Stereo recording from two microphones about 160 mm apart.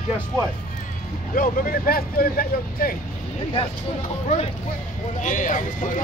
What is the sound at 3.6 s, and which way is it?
Speech, 35° left (ahead or behind).